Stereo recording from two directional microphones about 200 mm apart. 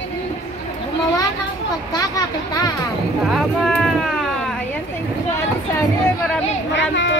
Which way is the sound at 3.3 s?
Centre (ahead or behind).